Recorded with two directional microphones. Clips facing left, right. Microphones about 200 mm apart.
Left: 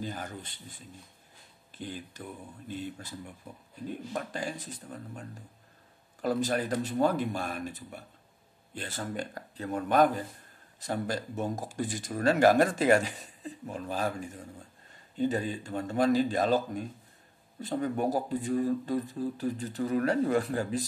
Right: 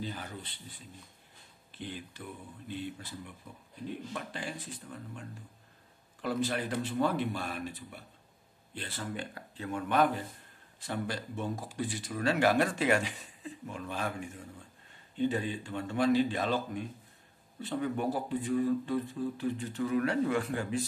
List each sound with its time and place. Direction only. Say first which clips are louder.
0.0 s speech: left 2 dB; 45° left (ahead or behind)
6.2 s speech: left 3 dB; 40° left (ahead or behind)